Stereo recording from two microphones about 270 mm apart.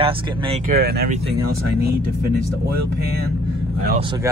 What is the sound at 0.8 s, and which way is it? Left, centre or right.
Speech, right.